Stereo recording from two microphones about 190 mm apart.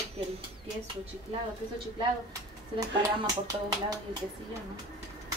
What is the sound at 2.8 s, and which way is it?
Speech, 20° right (ahead or behind).